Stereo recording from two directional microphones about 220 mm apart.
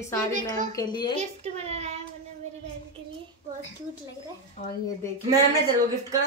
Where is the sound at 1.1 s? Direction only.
30° right (ahead or behind).